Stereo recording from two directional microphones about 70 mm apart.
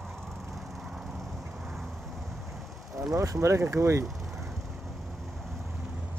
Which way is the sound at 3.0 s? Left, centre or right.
Right.